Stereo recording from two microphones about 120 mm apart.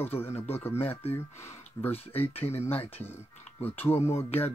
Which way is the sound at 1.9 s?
55° left (ahead or behind).